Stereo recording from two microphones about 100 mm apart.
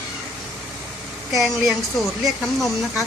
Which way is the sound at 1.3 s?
Centre (ahead or behind).